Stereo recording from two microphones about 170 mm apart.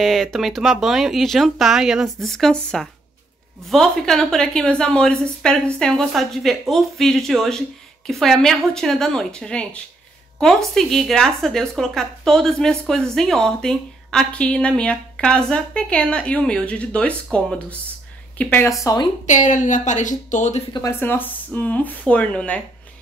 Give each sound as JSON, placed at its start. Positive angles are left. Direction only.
{"t": 0.0, "sound": "a woman's voice", "side_deg": 0}
{"t": 19.2, "sound": "speech", "side_deg": 50}
{"t": 20.7, "sound": "speech", "side_deg": 15}